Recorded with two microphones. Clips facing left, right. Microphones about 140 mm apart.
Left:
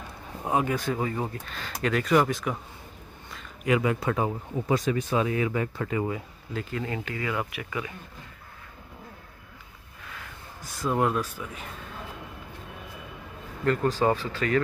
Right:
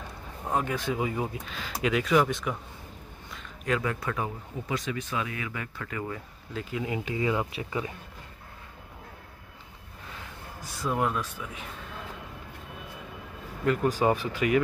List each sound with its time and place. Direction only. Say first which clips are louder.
0.5 s speech: left 3 dB; 5° left (ahead or behind)
4.0 s speech: left 5 dB; 30° left (ahead or behind)
6.5 s speech: even; 5° right (ahead or behind); by 7.9 s 30° right (ahead or behind)
10.8 s speech: left 3 dB; centre (ahead or behind)
13.7 s speech: left 1 dB; 10° right (ahead or behind)